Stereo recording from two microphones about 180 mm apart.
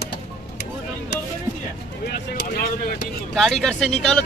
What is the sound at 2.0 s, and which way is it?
Speech, 60° left (ahead or behind).